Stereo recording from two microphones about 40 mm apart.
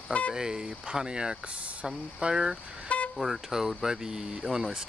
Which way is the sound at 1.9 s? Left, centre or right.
Right.